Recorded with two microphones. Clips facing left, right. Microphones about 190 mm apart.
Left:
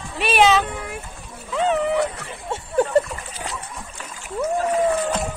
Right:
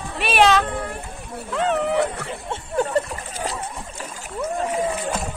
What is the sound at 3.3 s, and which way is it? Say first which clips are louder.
Splash: right 4 dB; 35° right (ahead or behind).